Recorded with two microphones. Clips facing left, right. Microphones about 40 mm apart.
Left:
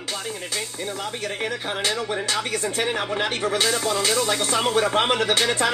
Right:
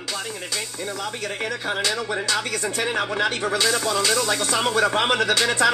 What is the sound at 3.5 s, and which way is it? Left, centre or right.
Speech, left.